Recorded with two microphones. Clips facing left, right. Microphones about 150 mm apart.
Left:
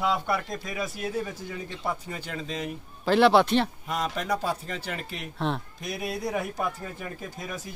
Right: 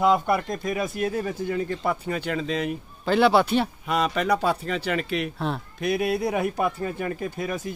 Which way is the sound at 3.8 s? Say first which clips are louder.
Right 6 dB; 75° right (ahead or behind).